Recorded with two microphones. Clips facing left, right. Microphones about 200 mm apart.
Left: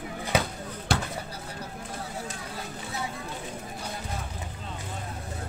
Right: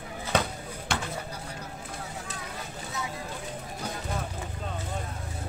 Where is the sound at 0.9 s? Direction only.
35° left (ahead or behind).